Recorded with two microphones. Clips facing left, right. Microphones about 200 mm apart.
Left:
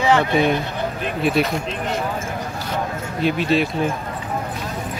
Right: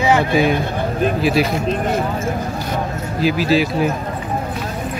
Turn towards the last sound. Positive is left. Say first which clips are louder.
# right 3 dB
turn(degrees=-5)  # may be behind; listen again after turning